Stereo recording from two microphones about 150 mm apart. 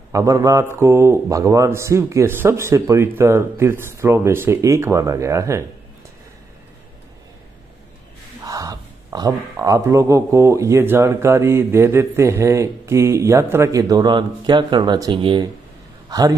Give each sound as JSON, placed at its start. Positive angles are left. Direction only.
{"t": 0.1, "sound": "speech", "side_deg": -20}
{"t": 8.4, "sound": "a man's voice", "side_deg": -25}